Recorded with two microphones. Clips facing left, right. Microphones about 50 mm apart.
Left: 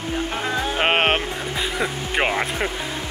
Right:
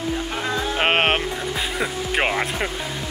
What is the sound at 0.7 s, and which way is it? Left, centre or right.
Music, centre.